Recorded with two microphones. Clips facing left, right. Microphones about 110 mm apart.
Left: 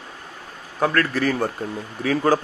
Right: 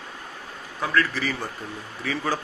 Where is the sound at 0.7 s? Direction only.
50° left (ahead or behind).